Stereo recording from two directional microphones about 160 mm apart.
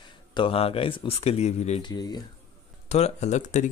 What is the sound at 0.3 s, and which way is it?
Speech, 35° left (ahead or behind).